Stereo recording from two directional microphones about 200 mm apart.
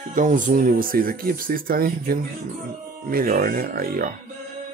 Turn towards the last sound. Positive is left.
turn(degrees=-45)  # may be behind; listen again after turning